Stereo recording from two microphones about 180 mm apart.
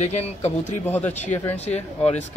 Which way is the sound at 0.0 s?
35° left (ahead or behind).